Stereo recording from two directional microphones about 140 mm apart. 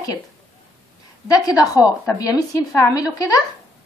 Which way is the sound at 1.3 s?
25° left (ahead or behind).